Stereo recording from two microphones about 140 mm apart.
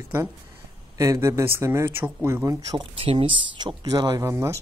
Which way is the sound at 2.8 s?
40° right (ahead or behind).